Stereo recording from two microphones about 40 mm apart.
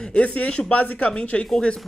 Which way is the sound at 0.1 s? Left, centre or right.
Left.